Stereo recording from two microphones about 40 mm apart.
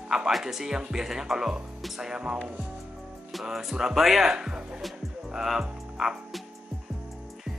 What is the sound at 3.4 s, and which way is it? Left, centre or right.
A man's voice, centre.